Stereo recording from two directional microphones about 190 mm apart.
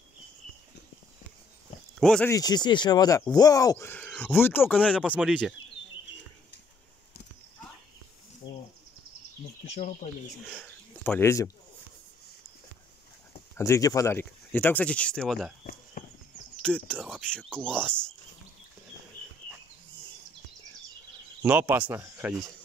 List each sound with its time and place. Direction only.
2.0 s speech: 5° left (ahead or behind)
2.3 s speech: 20° left (ahead or behind)
4.8 s speech: 5° right (ahead or behind)
8.4 s insect: 25° left (ahead or behind)
9.7 s bird: 35° left (ahead or behind)
10.5 s speech: 5° left (ahead or behind)
13.6 s speech: 15° left (ahead or behind)
16.0 s a sound: 45° left (ahead or behind)
16.6 s speech: 5° left (ahead or behind)
21.4 s speech: 10° right (ahead or behind)